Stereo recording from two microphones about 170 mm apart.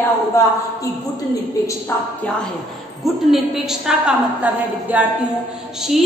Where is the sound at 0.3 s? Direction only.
15° left (ahead or behind).